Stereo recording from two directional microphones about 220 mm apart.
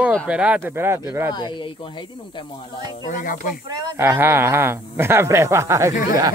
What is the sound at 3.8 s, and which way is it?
Speech, 10° right (ahead or behind).